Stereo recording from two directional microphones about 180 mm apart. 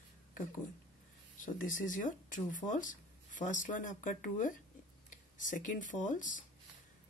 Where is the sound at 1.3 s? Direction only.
45° left (ahead or behind).